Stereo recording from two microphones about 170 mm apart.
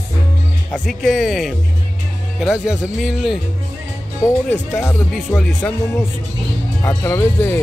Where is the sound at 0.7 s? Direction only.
5° left (ahead or behind).